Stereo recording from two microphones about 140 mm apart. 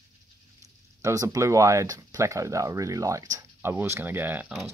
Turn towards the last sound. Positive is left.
turn(degrees=-10)  # may be behind; listen again after turning